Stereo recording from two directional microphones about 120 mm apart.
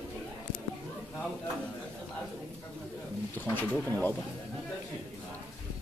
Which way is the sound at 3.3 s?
15° left (ahead or behind).